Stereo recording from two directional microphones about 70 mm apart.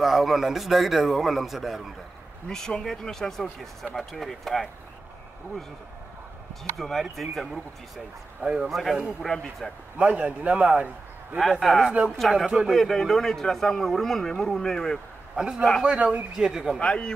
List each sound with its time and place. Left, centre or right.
0.0 s speech: centre
6.8 s speech: centre
8.4 s speech: centre
8.6 s speech: centre
9.9 s a man's voice: centre
11.6 s speech: centre
15.3 s a man's voice: centre
16.8 s speech: centre